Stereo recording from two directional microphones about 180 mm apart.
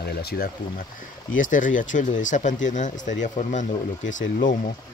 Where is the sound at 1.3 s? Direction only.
45° left (ahead or behind).